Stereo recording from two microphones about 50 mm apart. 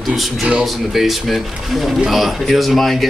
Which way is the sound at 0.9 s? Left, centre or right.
Centre.